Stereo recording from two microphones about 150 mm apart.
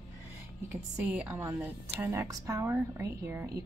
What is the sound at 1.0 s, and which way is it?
A woman's voice, 10° right (ahead or behind).